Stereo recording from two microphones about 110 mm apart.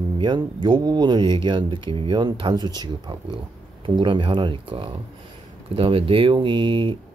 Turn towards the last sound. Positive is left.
turn(degrees=-50)  # may be behind; listen again after turning